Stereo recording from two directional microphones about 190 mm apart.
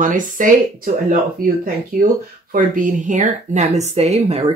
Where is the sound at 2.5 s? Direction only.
45° right (ahead or behind).